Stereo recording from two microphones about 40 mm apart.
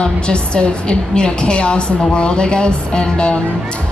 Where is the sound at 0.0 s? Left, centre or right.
Left.